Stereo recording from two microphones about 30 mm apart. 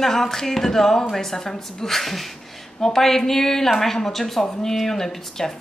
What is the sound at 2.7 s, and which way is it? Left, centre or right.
Speech, centre.